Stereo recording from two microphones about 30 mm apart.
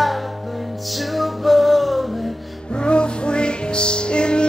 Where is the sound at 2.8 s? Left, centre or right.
Left.